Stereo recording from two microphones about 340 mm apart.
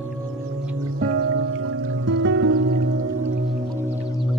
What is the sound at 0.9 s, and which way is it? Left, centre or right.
Music, right.